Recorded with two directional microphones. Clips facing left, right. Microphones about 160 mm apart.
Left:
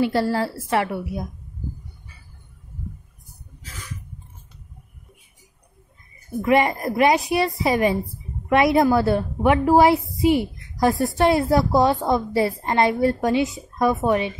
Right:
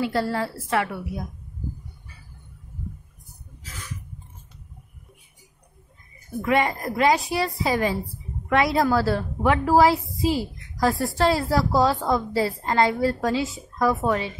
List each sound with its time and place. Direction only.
0.0 s a woman's voice: 30° left (ahead or behind)
6.4 s a woman's voice: 25° left (ahead or behind)